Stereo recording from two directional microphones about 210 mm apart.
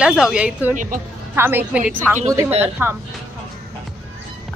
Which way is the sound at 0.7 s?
40° right (ahead or behind).